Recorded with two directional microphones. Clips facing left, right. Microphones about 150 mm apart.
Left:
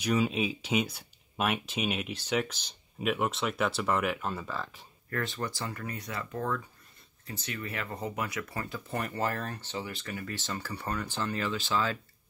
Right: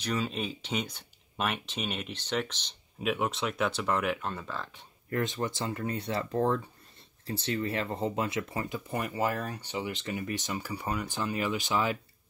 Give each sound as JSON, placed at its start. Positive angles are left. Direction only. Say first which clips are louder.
{"t": 0.0, "sound": "speech", "louder": "left 4 dB", "side_deg": 10}
{"t": 5.1, "sound": "speech", "louder": "right 3 dB", "side_deg": -20}